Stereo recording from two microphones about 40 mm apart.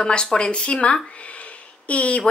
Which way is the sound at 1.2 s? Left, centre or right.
Left.